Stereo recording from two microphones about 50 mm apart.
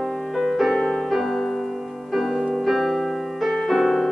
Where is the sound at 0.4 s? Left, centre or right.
Centre.